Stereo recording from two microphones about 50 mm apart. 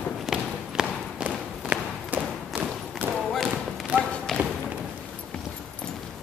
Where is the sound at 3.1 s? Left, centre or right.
Centre.